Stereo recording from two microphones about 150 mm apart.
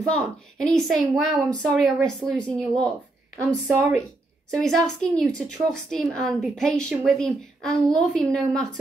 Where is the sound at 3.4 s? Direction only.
15° right (ahead or behind).